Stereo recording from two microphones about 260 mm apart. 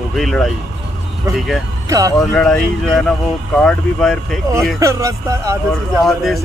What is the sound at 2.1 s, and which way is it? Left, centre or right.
Speech, centre.